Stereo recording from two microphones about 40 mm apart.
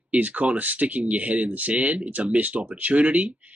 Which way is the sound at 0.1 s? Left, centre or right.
Right.